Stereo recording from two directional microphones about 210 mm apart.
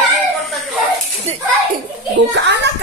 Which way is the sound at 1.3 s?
30° right (ahead or behind).